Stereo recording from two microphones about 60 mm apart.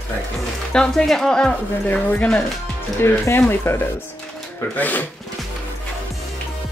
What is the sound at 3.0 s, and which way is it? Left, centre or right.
Speech, left.